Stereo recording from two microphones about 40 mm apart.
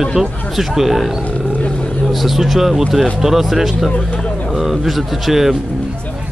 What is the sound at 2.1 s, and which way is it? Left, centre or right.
Speech, centre.